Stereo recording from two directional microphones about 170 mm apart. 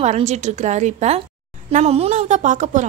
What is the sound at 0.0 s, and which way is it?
A woman's voice, 40° right (ahead or behind).